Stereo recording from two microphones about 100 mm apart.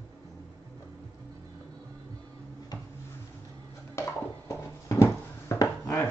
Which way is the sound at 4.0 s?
25° left (ahead or behind).